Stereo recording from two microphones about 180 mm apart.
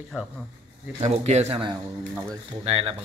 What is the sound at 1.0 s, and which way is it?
Speech, 40° right (ahead or behind).